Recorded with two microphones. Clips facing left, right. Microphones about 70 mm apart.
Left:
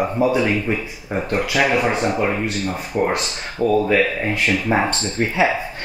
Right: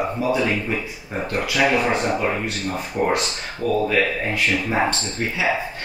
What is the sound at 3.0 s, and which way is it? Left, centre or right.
Speech, left.